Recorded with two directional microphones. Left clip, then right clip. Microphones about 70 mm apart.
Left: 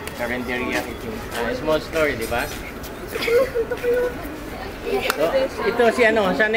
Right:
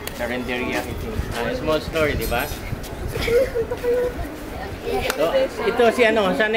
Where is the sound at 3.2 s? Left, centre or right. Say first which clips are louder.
Even; centre.